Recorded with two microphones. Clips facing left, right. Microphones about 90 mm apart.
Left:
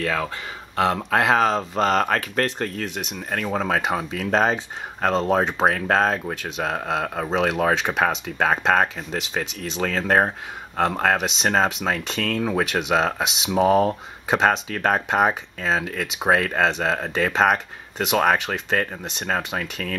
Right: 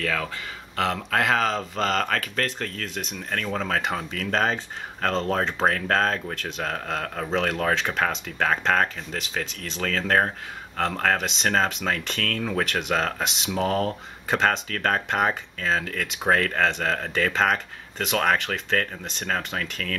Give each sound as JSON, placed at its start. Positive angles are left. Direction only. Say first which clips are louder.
{"t": 0.0, "sound": "speech", "louder": "left 3 dB", "side_deg": 25}